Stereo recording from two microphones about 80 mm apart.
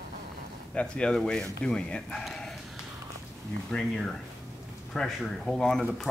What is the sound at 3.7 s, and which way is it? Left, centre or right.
Speech, centre.